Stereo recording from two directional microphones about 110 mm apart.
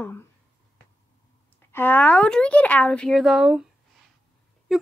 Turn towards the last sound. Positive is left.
turn(degrees=-5)  # may be behind; listen again after turning